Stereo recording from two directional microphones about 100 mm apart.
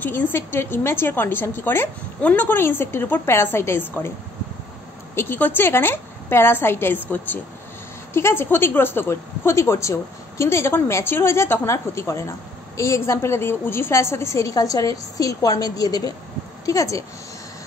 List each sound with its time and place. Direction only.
0.0 s a woman's voice: 20° left (ahead or behind)
5.1 s a woman's voice: 20° left (ahead or behind)
8.1 s a woman's voice: 25° left (ahead or behind)